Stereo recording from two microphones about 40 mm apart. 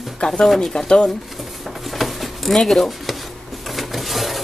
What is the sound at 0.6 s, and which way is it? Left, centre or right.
Speech, centre.